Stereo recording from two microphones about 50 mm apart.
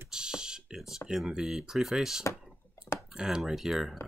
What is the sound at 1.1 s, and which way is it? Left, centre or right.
Speech, centre.